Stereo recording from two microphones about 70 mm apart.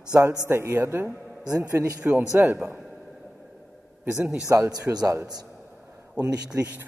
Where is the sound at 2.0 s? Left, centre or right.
Centre.